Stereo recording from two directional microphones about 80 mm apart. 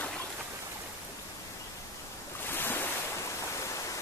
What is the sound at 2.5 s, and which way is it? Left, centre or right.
Waves, left.